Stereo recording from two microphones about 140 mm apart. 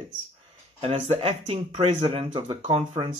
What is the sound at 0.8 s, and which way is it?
Speech, 45° right (ahead or behind).